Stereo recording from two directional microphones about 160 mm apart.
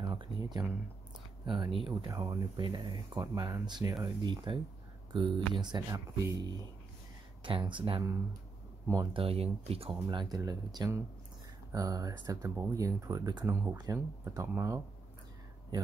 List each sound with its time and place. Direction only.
0.0 s a sound: 25° right (ahead or behind)
1.4 s speech: 30° right (ahead or behind)
7.7 s speech: 30° right (ahead or behind)
9.1 s speech: 35° right (ahead or behind)
10.0 s speech: 25° right (ahead or behind)